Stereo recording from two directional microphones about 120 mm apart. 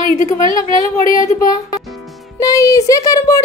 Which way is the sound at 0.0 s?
90° left.